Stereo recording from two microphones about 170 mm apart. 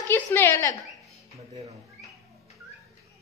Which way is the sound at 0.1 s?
15° left (ahead or behind).